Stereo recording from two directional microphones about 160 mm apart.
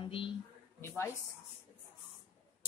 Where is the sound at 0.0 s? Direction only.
35° left (ahead or behind).